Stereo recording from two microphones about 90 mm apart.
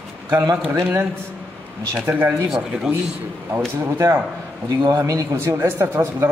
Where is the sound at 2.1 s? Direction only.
20° right (ahead or behind).